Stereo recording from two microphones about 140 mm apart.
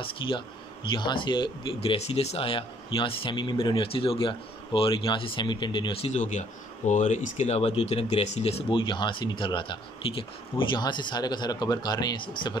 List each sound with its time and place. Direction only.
0.0 s speech: 40° left (ahead or behind)